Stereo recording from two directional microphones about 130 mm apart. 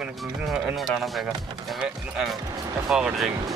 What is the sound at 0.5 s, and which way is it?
Speech, centre (ahead or behind).